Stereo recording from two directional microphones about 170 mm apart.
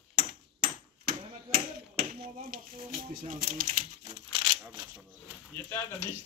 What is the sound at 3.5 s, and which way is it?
Speech, 55° right (ahead or behind).